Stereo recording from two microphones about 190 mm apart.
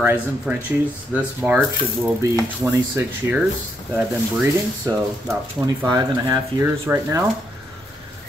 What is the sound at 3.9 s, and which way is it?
Speech, 10° right (ahead or behind).